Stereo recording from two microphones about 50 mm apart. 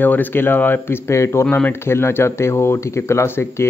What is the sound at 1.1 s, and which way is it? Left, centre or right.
Speech, left.